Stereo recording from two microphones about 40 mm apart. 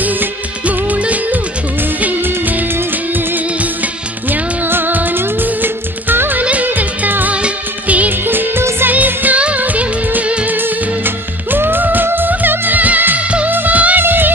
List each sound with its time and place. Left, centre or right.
0.0 s music: right
2.2 s music: right
4.3 s music: right
6.4 s music: right
8.3 s music: right
8.9 s music: right
10.5 s music: right
13.9 s music: right